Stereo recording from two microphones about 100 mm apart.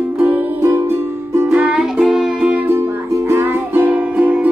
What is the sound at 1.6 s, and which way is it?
Music, 10° right (ahead or behind).